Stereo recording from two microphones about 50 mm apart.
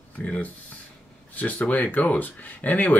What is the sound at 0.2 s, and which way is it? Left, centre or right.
Speech, left.